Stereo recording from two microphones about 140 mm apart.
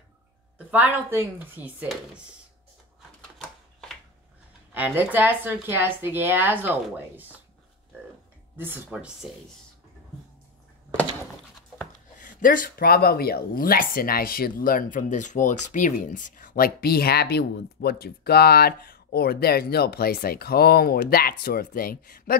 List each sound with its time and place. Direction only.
0.7 s speech: 10° right (ahead or behind)
3.4 s a sound: 5° left (ahead or behind)
4.7 s speech: 10° right (ahead or behind)
8.5 s speech: 15° right (ahead or behind)
12.2 s speech: 70° left (ahead or behind); by 22.4 s 90° left